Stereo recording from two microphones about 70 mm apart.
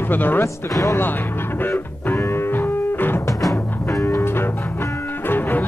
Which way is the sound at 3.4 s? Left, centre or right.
Centre.